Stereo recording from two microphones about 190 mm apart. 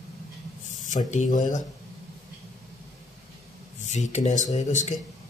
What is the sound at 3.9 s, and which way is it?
Speech, 40° left (ahead or behind).